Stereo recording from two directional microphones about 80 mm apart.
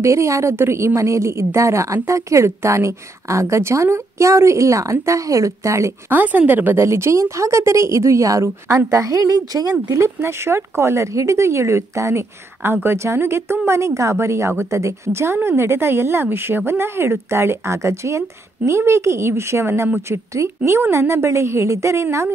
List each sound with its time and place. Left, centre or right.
0.0 s speech: right
6.0 s speech: right
9.8 s speech: right